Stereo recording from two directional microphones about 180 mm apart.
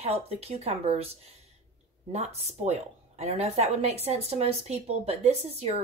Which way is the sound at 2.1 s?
35° right (ahead or behind).